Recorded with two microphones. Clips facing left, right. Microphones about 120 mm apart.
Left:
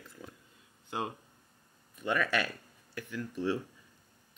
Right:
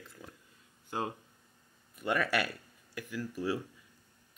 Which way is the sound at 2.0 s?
10° right (ahead or behind).